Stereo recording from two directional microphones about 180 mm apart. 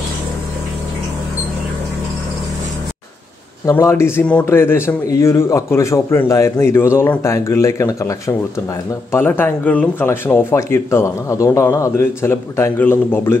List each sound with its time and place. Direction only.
3.6 s speech: 15° left (ahead or behind)